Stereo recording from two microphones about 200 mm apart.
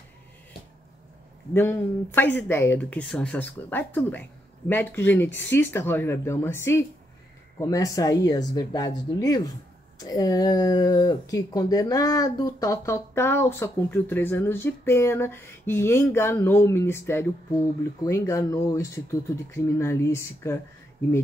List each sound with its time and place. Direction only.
1.5 s speech: 10° left (ahead or behind)